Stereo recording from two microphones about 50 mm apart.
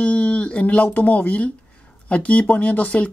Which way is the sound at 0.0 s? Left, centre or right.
Left.